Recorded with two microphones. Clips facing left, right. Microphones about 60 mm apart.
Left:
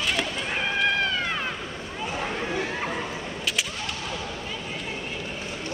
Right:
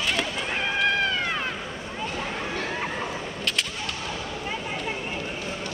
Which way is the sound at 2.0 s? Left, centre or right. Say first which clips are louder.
Left 2 dB; centre.